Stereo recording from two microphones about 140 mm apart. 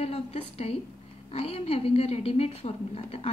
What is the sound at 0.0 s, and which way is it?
A woman's voice, 45° left (ahead or behind).